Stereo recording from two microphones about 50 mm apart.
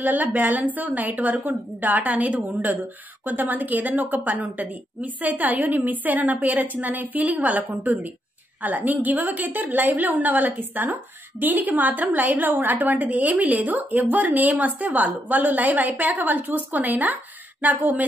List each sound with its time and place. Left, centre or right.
0.0 s a woman's voice: right